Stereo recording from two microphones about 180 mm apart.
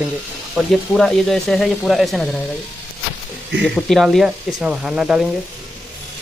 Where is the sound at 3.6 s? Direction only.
Centre (ahead or behind).